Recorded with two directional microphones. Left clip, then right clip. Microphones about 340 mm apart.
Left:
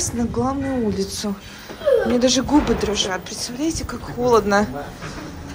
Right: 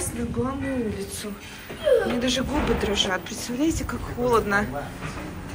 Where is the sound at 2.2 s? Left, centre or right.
Centre.